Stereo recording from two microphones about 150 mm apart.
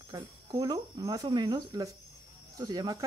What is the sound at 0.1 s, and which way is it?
Speech, 25° right (ahead or behind).